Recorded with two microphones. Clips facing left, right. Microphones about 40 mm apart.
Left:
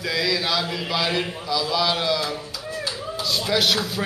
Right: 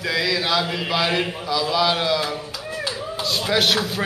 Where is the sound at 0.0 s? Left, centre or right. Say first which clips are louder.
Right 1 dB; centre.